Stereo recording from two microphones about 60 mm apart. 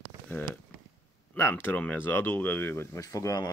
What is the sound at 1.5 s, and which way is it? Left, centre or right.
Speech, left.